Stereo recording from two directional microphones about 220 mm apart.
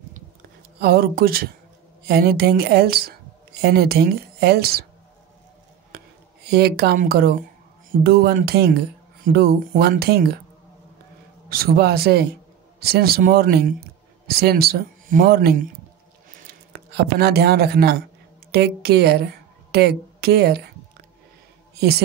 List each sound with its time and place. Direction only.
0.7 s speech: 45° right (ahead or behind)
6.4 s speech: 45° right (ahead or behind)
11.4 s speech: 45° right (ahead or behind)
16.7 s a woman's voice: 45° right (ahead or behind)
21.7 s a woman's voice: 45° right (ahead or behind)